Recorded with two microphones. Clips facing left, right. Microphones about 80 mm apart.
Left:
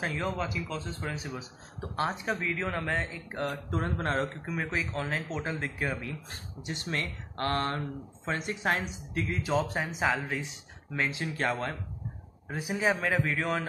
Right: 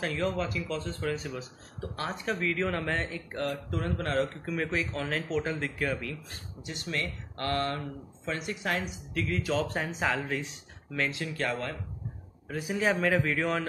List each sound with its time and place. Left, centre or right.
0.0 s speech: centre
1.8 s speech: left
2.2 s speech: centre
3.4 s speech: left
4.6 s speech: centre
6.6 s speech: left
9.7 s speech: centre
11.0 s speech: left
13.0 s speech: centre